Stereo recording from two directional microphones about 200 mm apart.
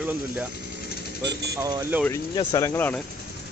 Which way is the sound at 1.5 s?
15° right (ahead or behind).